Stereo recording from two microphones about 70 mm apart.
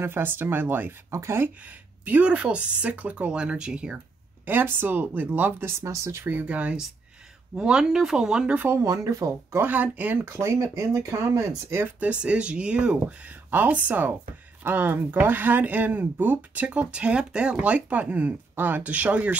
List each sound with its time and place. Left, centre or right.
0.0 s speech: right
1.1 s speech: right
1.6 s a woman's voice: right
4.5 s speech: right
6.3 s a woman's voice: right
8.5 s speech: right
8.8 s speech: right
9.6 s speech: right
10.2 s speech: right
12.0 s a woman's voice: centre